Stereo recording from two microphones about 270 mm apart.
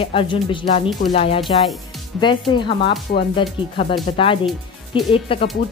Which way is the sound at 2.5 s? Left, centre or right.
Centre.